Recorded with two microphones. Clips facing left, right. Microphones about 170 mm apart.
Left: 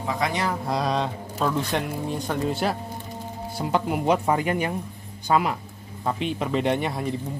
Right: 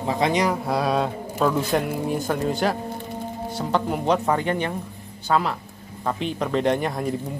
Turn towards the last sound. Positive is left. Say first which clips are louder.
# right 2 dB
turn(degrees=0)  # may be behind; listen again after turning